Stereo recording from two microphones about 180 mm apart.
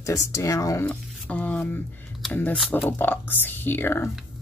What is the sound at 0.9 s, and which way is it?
Speech, 10° left (ahead or behind).